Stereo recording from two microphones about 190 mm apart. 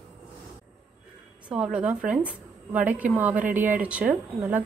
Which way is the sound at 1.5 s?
5° right (ahead or behind).